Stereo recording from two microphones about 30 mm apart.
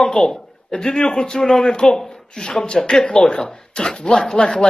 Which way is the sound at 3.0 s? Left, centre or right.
Left.